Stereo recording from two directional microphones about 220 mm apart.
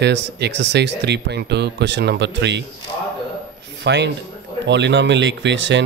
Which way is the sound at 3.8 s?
50° right (ahead or behind).